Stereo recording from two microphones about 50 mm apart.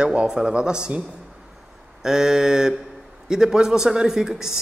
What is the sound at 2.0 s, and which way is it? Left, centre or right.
A man's voice, centre.